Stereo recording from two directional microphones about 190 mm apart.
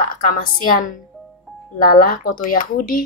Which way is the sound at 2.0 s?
50° left (ahead or behind).